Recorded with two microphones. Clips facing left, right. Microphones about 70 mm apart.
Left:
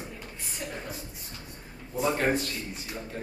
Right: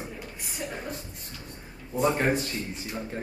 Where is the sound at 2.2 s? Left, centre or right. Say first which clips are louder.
Right 1 dB; right.